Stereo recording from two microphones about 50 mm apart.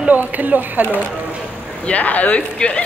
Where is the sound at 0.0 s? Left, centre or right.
Right.